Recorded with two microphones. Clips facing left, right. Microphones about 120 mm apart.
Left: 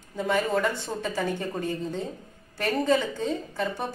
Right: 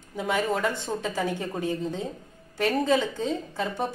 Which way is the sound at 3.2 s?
20° right (ahead or behind).